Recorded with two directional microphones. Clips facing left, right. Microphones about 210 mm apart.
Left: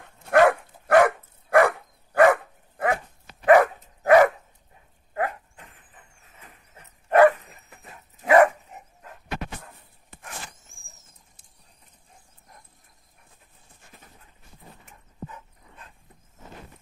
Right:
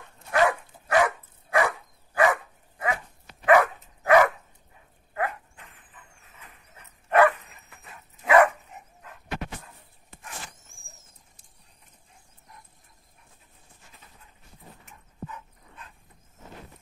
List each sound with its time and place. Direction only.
0.0 s dog: 55° left (ahead or behind)
3.4 s dog: 45° left (ahead or behind)
7.1 s dog: 40° left (ahead or behind)